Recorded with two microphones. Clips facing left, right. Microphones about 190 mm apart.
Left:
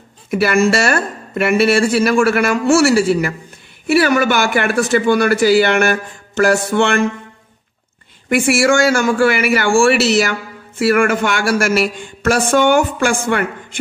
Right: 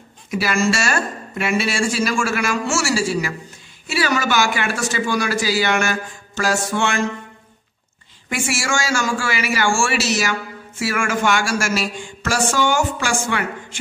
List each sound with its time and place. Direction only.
0.3 s speech: 60° left (ahead or behind)
8.3 s speech: 60° left (ahead or behind)